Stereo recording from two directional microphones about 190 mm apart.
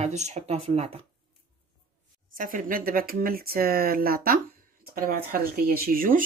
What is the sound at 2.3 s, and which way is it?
Speech, 45° right (ahead or behind).